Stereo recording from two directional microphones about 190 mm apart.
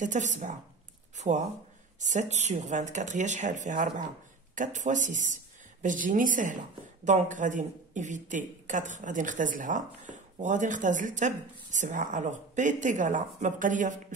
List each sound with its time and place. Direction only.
0.0 s speech: 40° right (ahead or behind)
1.1 s a sound: 40° right (ahead or behind)
2.0 s speech: 40° right (ahead or behind)